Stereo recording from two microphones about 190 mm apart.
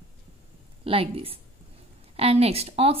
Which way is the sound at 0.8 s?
30° right (ahead or behind).